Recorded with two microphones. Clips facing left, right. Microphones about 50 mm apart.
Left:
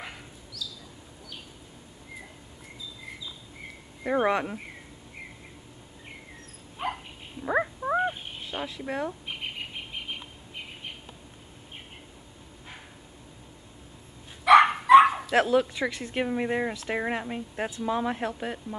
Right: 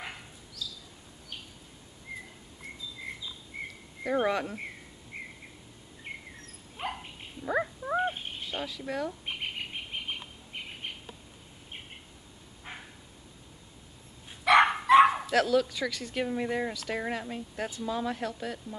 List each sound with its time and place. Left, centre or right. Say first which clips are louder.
0.6 s a sound: left 1 dB; right
4.0 s speech: left 3 dB; centre
7.4 s a sound: left 4 dB; centre
8.5 s speech: left 3 dB; left
14.4 s dog: left 4 dB; centre
15.3 s speech: left 3 dB; left